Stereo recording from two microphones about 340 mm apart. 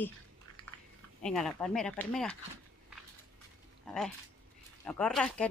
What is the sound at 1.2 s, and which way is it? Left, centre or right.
Speech, centre.